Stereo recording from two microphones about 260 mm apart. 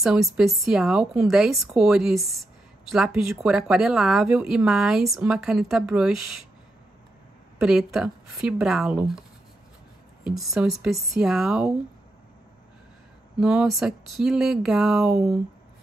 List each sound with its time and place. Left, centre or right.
0.0 s a woman's voice: centre
2.1 s a woman's voice: centre
2.9 s speech: centre
7.6 s speech: centre
10.2 s speech: centre
13.4 s speech: centre